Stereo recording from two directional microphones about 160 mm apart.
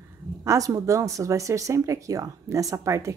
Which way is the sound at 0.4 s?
20° right (ahead or behind).